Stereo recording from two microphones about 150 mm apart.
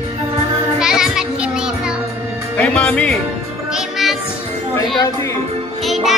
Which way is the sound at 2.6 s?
10° left (ahead or behind).